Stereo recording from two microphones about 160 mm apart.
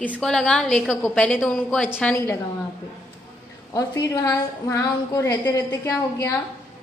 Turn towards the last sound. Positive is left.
turn(degrees=20)  # may be behind; listen again after turning